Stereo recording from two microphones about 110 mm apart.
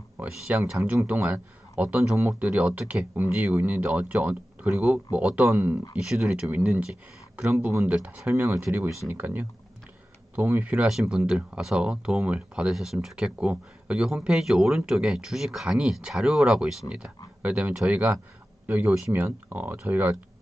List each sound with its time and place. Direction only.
0.2 s speech: 10° right (ahead or behind)
5.9 s speech: 5° right (ahead or behind)
8.7 s speech: 25° right (ahead or behind)